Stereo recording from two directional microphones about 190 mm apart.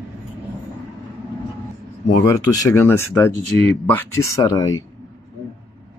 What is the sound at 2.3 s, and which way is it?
Speech, 20° left (ahead or behind).